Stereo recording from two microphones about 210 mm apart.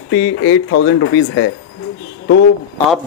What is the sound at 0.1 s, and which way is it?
Speech, 70° left (ahead or behind).